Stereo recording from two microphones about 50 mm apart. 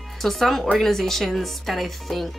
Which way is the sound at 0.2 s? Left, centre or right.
Centre.